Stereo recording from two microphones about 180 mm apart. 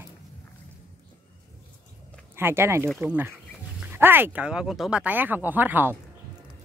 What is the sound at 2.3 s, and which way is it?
Speech, 15° right (ahead or behind).